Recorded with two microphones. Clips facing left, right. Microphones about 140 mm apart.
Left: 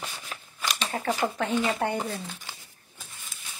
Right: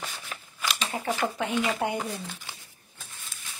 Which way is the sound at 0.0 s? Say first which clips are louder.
Even; 10° left (ahead or behind).